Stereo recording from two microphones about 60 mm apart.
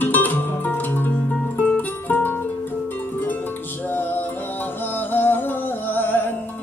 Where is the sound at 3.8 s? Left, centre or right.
Left.